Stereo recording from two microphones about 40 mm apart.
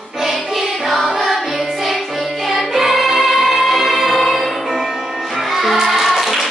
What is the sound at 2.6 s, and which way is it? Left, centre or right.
Music, centre.